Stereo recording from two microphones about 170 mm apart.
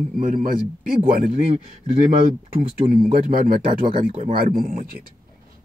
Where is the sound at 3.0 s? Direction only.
55° right (ahead or behind).